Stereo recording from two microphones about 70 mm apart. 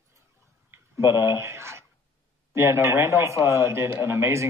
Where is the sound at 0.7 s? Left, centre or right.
Right.